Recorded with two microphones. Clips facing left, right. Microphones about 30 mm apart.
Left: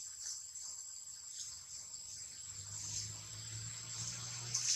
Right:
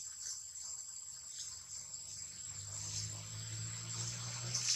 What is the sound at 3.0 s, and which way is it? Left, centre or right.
Water, centre.